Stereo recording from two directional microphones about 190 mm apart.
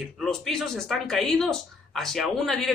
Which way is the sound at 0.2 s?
Centre (ahead or behind).